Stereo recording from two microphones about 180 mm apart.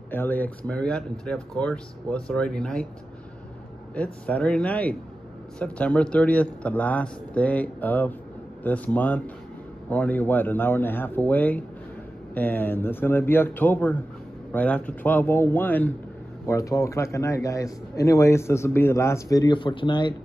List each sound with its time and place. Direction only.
0.1 s speech: 10° left (ahead or behind)
3.9 s speech: 5° left (ahead or behind); by 20.2 s 25° left (ahead or behind)